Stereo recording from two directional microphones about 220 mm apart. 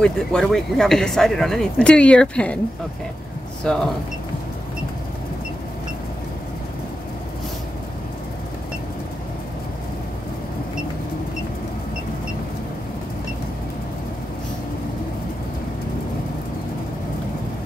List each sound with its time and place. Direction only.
0.0 s speech: 5° left (ahead or behind)
3.6 s speech: 5° left (ahead or behind)